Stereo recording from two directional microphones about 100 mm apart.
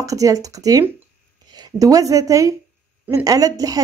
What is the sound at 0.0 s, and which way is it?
A woman's voice, 35° right (ahead or behind).